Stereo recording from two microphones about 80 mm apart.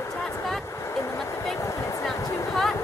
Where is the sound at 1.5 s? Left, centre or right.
Left.